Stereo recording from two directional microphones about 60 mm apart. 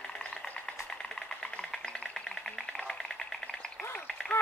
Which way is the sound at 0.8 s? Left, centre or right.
Centre.